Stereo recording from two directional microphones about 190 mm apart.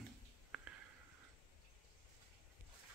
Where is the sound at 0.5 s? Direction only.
5° right (ahead or behind).